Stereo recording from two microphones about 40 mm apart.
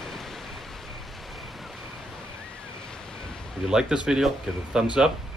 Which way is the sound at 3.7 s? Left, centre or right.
Centre.